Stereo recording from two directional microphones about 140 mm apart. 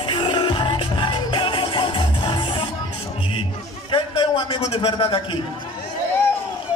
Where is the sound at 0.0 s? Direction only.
35° left (ahead or behind).